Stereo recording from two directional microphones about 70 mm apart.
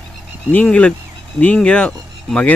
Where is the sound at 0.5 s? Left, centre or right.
Centre.